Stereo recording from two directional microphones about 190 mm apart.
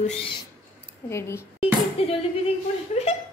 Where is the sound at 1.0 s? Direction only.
15° left (ahead or behind).